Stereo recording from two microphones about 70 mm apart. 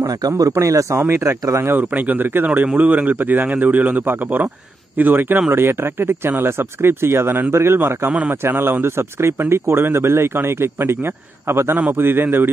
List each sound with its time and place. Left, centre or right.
0.0 s speech: right
0.3 s speech: right
1.8 s speech: right